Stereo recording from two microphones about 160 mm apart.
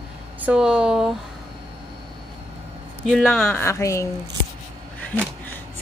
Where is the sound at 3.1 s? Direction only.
Centre (ahead or behind).